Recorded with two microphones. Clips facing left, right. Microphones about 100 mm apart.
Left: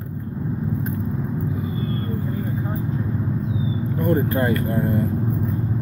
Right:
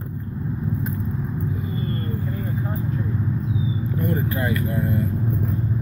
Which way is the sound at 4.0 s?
45° left (ahead or behind).